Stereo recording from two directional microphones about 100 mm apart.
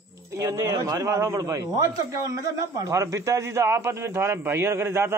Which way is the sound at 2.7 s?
35° right (ahead or behind).